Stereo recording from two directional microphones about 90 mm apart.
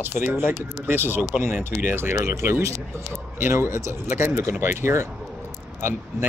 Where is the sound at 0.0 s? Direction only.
20° right (ahead or behind).